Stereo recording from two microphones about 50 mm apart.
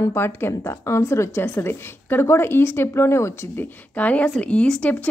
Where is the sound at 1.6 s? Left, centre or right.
Left.